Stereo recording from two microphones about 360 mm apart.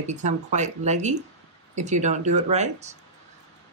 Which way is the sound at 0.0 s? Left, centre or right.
Centre.